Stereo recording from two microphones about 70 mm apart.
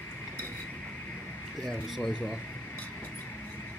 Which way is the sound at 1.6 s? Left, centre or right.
Centre.